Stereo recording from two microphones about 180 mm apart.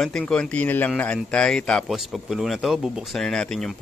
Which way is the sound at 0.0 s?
Centre (ahead or behind).